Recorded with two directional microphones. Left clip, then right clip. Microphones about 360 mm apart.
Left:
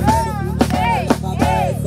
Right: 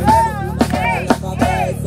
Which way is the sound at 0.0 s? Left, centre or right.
Centre.